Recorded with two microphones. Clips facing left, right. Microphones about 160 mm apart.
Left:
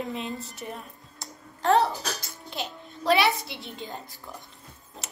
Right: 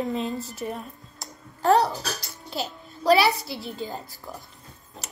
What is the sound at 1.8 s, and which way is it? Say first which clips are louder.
Music: right 1 dB; 40° right (ahead or behind).